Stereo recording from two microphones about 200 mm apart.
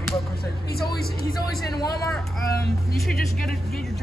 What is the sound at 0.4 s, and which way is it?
Speech, 50° left (ahead or behind).